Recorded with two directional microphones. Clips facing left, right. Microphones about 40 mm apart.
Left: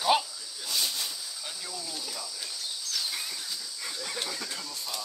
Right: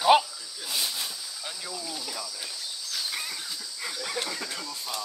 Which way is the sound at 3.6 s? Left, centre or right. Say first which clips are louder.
Right 3 dB; right.